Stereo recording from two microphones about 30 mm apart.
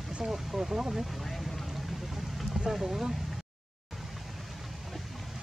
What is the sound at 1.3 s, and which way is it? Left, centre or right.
Vehicle, centre.